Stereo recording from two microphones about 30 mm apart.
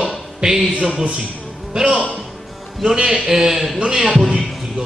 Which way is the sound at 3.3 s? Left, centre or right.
Centre.